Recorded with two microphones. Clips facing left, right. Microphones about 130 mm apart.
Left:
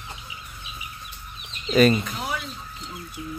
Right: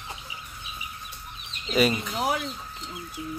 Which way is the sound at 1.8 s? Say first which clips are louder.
Left 5 dB; 10° right (ahead or behind).